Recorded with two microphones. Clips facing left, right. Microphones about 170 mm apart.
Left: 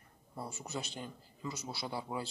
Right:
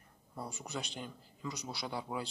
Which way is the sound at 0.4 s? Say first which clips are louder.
Even; 5° left (ahead or behind).